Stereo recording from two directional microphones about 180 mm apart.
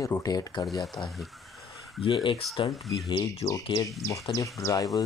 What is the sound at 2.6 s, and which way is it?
Speech, 25° left (ahead or behind).